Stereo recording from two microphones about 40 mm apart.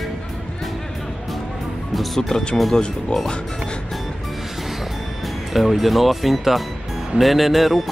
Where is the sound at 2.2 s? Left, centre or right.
Centre.